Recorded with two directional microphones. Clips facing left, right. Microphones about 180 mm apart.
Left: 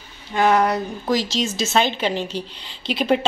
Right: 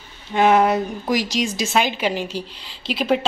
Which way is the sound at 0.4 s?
25° right (ahead or behind).